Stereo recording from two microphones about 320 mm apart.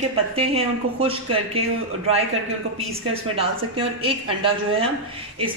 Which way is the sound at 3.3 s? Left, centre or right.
Centre.